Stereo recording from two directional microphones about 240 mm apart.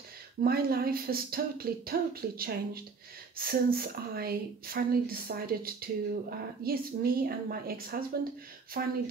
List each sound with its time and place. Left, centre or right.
0.4 s speech: right